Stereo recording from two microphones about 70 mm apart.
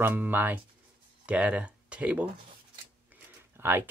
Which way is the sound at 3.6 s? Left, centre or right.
Right.